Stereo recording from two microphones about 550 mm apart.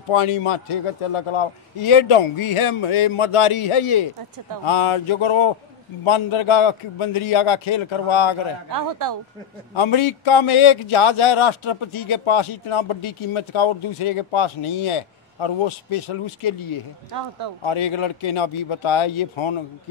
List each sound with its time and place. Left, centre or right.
0.1 s a man's voice: left
8.6 s speech: right
9.8 s a man's voice: left